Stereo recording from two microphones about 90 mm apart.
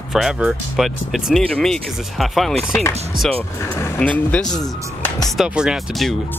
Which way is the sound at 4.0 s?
15° left (ahead or behind).